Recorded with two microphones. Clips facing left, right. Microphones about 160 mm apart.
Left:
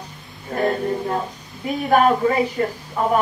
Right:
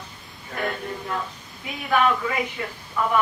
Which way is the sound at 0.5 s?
35° left (ahead or behind).